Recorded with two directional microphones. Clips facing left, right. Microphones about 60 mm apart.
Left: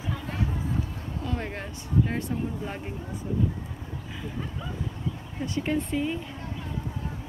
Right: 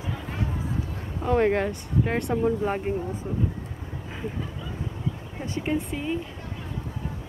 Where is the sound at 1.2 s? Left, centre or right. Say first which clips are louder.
Right 13 dB; right.